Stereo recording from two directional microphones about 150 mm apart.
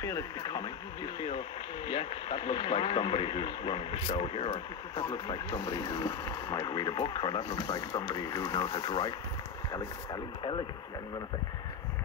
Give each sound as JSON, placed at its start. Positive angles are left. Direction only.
{"t": 0.0, "sound": "speech", "side_deg": 25}